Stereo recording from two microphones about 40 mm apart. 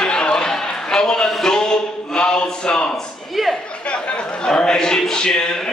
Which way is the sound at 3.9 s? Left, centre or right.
Left.